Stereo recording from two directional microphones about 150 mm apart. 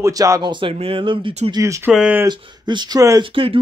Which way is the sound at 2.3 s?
30° right (ahead or behind).